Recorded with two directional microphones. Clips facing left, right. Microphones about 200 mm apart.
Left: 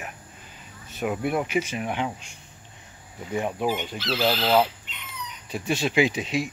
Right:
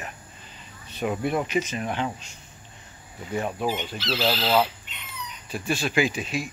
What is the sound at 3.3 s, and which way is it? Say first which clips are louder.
Speech: left 1 dB; 15° left (ahead or behind).